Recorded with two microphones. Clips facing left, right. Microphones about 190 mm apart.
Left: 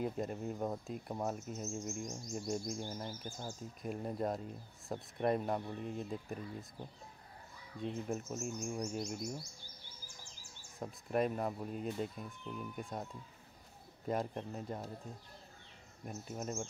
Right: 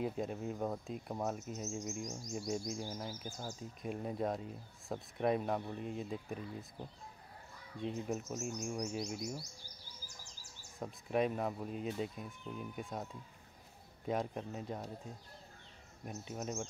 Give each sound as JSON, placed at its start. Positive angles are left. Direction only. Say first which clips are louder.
{"t": 0.0, "sound": "speech", "louder": "even", "side_deg": 0}
{"t": 7.8, "sound": "speech", "louder": "even", "side_deg": 0}
{"t": 10.0, "sound": "insect", "louder": "even", "side_deg": -40}
{"t": 10.8, "sound": "speech", "louder": "even", "side_deg": 0}
{"t": 16.1, "sound": "speech", "louder": "even", "side_deg": 0}